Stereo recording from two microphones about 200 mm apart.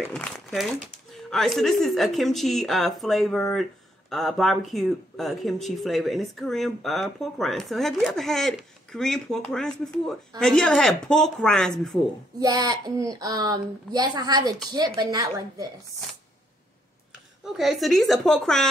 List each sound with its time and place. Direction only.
0.1 s speech: centre (ahead or behind)
12.4 s a woman's voice: 20° right (ahead or behind)
17.5 s speech: centre (ahead or behind)